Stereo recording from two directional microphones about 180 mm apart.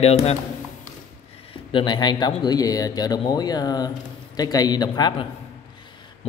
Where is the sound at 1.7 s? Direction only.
25° left (ahead or behind).